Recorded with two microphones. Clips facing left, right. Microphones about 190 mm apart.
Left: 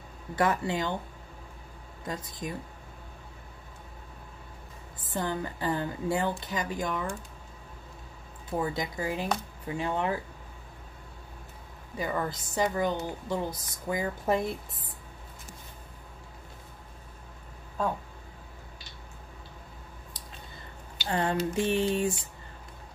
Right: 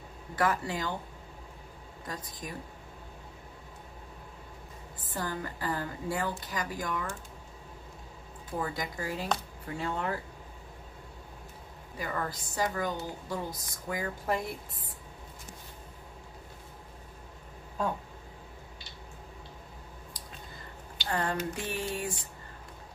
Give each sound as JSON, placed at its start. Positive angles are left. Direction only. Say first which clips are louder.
{"t": 0.4, "sound": "a woman's voice", "louder": "left 3 dB", "side_deg": 25}
{"t": 2.0, "sound": "a woman's voice", "louder": "left 5 dB", "side_deg": 25}
{"t": 5.1, "sound": "a woman's voice", "louder": "left 4 dB", "side_deg": 20}
{"t": 8.5, "sound": "a woman's voice", "louder": "left 4 dB", "side_deg": 20}
{"t": 12.0, "sound": "a woman's voice", "louder": "left 4 dB", "side_deg": 20}
{"t": 21.1, "sound": "a woman's voice", "louder": "left 4 dB", "side_deg": 25}